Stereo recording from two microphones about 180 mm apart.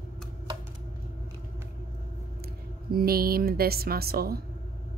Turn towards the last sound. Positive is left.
turn(degrees=-60)  # may be behind; listen again after turning